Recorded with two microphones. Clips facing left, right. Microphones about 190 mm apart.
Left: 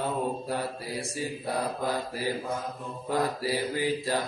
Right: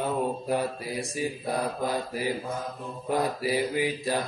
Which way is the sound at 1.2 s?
15° right (ahead or behind).